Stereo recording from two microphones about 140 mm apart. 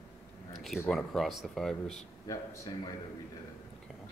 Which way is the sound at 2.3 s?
25° left (ahead or behind).